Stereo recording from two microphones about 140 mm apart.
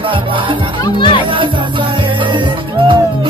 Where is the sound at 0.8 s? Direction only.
35° left (ahead or behind).